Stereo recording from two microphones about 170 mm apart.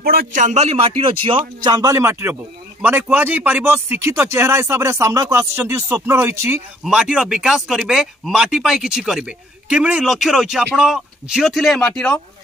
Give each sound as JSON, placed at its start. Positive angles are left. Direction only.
{"t": 0.0, "sound": "a man's voice", "side_deg": -60}